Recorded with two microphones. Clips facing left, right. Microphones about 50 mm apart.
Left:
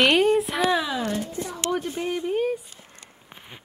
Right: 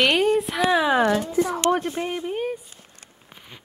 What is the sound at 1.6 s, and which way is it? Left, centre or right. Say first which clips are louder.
Speech: right 1 dB; right.